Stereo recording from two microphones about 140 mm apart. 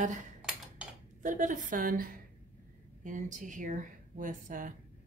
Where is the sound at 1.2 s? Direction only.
65° right (ahead or behind); by 2.0 s 80° right.